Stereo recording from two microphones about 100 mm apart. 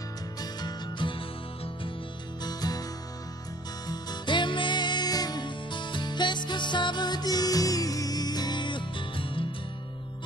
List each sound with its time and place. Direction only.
0.4 s music: 45° left (ahead or behind)
2.4 s music: 40° left (ahead or behind); by 9.5 s 60° left (ahead or behind)